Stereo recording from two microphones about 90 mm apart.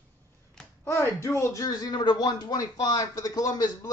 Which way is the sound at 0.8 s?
30° left (ahead or behind).